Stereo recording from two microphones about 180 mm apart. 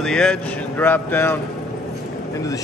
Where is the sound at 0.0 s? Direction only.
5° left (ahead or behind).